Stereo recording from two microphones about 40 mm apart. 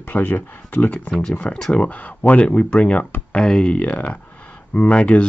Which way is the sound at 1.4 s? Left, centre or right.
Left.